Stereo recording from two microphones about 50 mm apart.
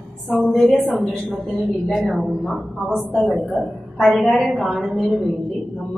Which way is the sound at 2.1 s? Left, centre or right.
Centre.